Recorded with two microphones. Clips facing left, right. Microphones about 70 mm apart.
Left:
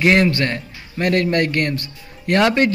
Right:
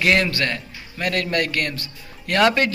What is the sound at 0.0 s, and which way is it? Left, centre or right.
A man's voice, left.